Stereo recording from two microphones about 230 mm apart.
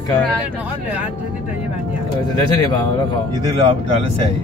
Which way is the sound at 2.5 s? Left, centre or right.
Centre.